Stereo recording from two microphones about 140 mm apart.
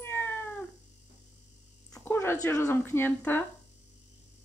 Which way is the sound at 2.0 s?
15° left (ahead or behind).